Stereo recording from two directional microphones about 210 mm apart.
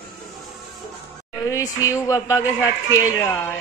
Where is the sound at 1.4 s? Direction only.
15° left (ahead or behind).